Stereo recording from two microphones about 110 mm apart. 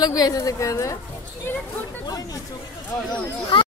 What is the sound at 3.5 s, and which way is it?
Speech, 50° left (ahead or behind).